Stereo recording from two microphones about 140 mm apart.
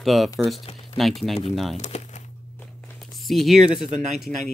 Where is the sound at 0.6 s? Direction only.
40° left (ahead or behind).